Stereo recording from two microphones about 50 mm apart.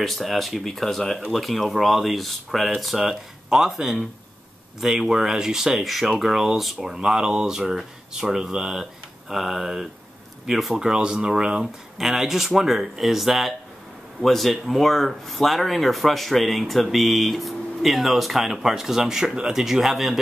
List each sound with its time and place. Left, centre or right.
0.0 s speech: centre
12.0 s speech: centre